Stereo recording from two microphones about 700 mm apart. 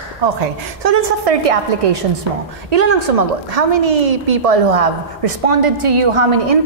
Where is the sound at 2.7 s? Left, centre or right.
Right.